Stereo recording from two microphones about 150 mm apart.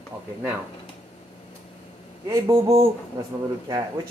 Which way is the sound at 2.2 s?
20° right (ahead or behind).